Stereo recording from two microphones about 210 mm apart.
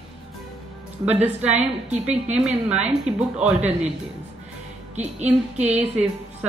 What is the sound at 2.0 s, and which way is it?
A woman's voice, 5° right (ahead or behind).